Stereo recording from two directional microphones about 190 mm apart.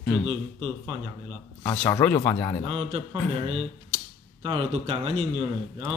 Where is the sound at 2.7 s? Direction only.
30° right (ahead or behind).